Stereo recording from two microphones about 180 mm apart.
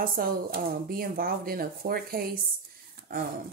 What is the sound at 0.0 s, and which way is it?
Speech, 55° right (ahead or behind).